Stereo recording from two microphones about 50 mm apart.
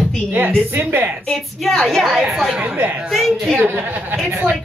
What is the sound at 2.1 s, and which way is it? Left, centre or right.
A woman's voice, centre.